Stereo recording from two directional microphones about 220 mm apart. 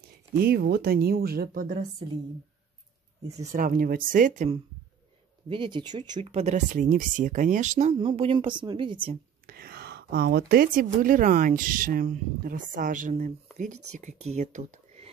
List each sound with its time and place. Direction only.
0.4 s speech: 45° right (ahead or behind)
3.3 s speech: 40° right (ahead or behind)
5.5 s speech: 20° right (ahead or behind)
9.5 s speech: 45° right (ahead or behind)